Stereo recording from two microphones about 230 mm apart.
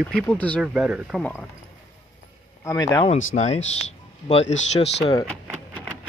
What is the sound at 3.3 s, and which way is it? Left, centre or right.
Speech, left.